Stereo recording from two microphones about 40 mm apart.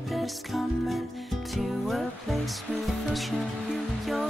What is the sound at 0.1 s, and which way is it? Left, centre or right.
Music, centre.